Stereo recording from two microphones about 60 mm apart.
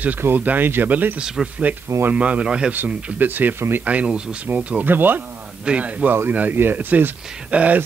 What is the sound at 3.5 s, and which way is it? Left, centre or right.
Speech, right.